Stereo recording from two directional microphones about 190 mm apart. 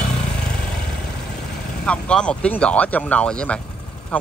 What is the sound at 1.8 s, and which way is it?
Speech, 5° left (ahead or behind).